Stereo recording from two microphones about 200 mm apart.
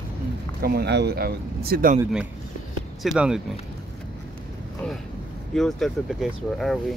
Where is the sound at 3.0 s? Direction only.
5° right (ahead or behind).